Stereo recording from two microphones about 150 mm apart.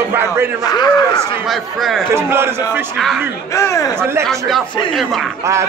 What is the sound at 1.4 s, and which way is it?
Speech, centre (ahead or behind).